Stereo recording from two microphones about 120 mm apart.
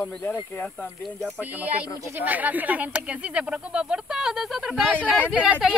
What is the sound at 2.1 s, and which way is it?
Speech, 15° right (ahead or behind).